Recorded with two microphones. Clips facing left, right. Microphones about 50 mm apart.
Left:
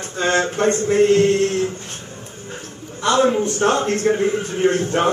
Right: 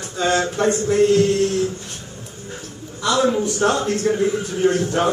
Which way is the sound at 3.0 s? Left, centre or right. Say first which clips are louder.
Left 2 dB; left.